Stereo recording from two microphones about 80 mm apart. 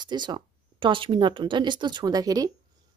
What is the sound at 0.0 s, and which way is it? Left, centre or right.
Speech, right.